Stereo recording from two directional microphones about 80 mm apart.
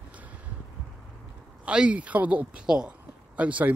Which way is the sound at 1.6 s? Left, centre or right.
Centre.